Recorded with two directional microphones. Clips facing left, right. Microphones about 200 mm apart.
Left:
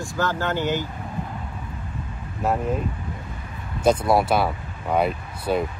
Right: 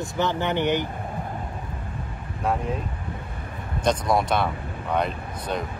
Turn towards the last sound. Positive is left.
turn(degrees=5)  # may be behind; listen again after turning